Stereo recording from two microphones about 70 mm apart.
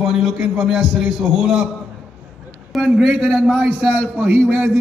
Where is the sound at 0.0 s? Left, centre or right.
Centre.